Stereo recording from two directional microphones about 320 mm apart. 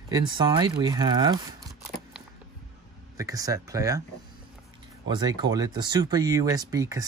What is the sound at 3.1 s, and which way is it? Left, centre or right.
Speech, centre.